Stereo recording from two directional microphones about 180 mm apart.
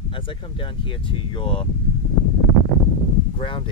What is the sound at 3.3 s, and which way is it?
Speech, 30° left (ahead or behind).